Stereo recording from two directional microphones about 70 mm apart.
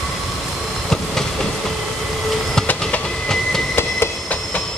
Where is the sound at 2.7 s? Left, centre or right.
Centre.